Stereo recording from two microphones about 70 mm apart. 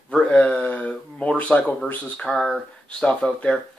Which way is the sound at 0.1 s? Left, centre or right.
Centre.